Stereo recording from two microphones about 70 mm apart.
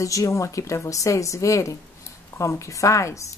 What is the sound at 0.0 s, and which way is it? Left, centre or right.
Speech, left.